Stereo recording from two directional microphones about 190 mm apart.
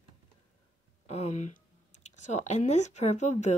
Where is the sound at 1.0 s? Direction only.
35° left (ahead or behind).